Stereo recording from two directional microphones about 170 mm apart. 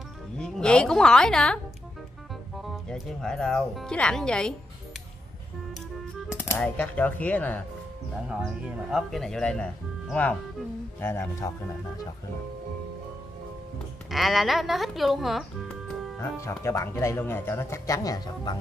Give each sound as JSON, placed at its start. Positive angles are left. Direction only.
{"t": 0.4, "sound": "speech", "side_deg": 5}
{"t": 2.6, "sound": "speech", "side_deg": 0}
{"t": 6.3, "sound": "speech", "side_deg": 10}
{"t": 8.3, "sound": "speech", "side_deg": -5}
{"t": 14.1, "sound": "speech", "side_deg": 0}
{"t": 16.2, "sound": "speech", "side_deg": 15}